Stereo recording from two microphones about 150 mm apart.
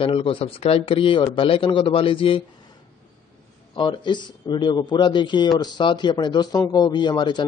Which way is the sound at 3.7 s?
30° left (ahead or behind).